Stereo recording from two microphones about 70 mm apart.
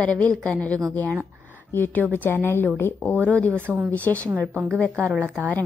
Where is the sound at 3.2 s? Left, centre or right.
Centre.